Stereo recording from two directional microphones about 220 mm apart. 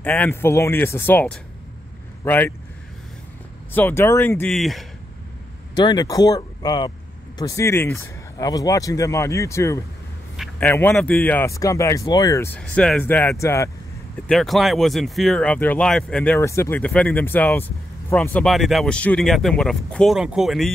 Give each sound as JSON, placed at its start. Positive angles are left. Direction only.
{"t": 0.0, "sound": "speech", "side_deg": 5}
{"t": 3.7, "sound": "speech", "side_deg": 10}
{"t": 5.8, "sound": "speech", "side_deg": 20}
{"t": 10.3, "sound": "a sound", "side_deg": 0}
{"t": 10.7, "sound": "speech", "side_deg": 10}
{"t": 14.2, "sound": "speech", "side_deg": 0}